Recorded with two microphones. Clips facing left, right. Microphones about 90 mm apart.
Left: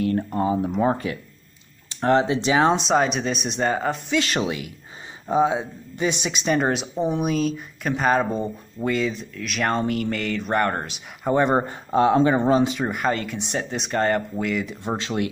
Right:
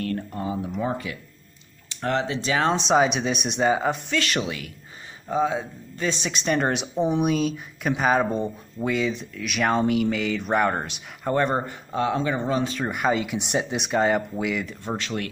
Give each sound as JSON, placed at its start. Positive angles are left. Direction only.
{"t": 0.4, "sound": "speech", "side_deg": 35}
{"t": 1.9, "sound": "speech", "side_deg": 30}
{"t": 2.4, "sound": "speech", "side_deg": 20}
{"t": 2.7, "sound": "speech", "side_deg": 0}
{"t": 4.2, "sound": "speech", "side_deg": 25}
{"t": 11.3, "sound": "speech", "side_deg": 20}
{"t": 11.6, "sound": "speech", "side_deg": 35}
{"t": 12.6, "sound": "speech", "side_deg": 10}
{"t": 12.9, "sound": "speech", "side_deg": -5}
{"t": 14.8, "sound": "speech", "side_deg": 25}